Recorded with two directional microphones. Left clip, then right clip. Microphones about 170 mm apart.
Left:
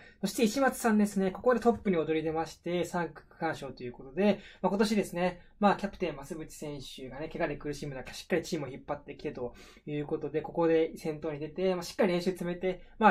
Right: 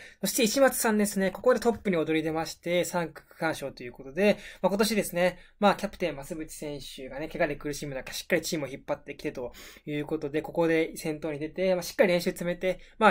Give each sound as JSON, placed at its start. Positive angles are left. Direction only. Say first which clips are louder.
{"t": 0.2, "sound": "speech", "louder": "right 5 dB", "side_deg": -15}